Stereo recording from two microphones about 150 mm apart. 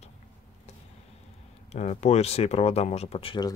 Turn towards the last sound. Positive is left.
turn(degrees=35)  # may be behind; listen again after turning